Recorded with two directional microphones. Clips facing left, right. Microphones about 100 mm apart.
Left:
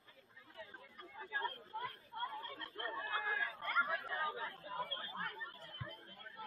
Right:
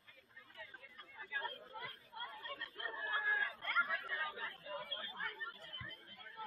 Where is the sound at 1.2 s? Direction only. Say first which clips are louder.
Left 3 dB; 35° left (ahead or behind).